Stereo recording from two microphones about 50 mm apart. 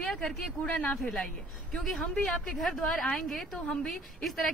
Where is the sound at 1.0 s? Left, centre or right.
Centre.